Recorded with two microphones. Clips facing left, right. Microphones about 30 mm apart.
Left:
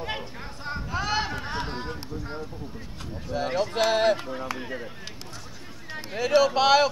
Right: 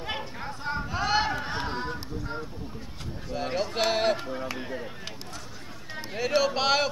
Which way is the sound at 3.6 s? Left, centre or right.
Centre.